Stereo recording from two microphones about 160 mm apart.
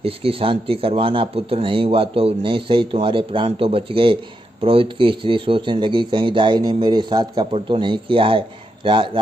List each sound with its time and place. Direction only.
0.0 s speech: 35° right (ahead or behind)